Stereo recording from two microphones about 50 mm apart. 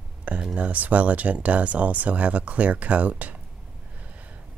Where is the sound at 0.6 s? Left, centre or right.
Right.